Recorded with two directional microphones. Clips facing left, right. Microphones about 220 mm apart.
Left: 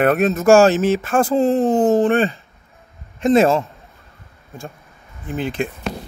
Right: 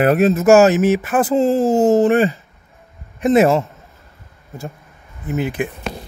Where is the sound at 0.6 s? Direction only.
15° right (ahead or behind).